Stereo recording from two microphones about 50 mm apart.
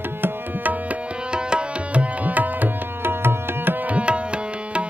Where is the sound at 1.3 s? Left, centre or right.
Right.